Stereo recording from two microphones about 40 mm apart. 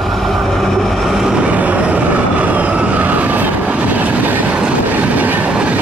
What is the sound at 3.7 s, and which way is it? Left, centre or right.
Train, right.